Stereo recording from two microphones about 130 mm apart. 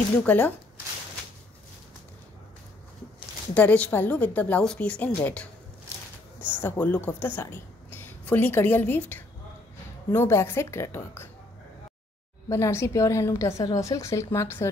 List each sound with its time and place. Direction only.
0.2 s a woman's voice: 15° left (ahead or behind)
3.5 s a woman's voice: 10° left (ahead or behind)
6.6 s a woman's voice: 15° left (ahead or behind)
12.4 s a woman's voice: 25° left (ahead or behind)